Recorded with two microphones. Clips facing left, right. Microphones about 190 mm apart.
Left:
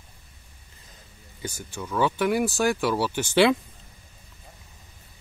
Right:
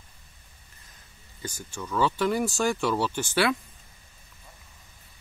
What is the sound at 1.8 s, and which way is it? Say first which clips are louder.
Speech: left 1 dB; 15° left (ahead or behind).